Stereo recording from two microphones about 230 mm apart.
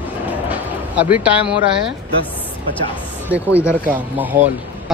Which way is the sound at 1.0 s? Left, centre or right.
Centre.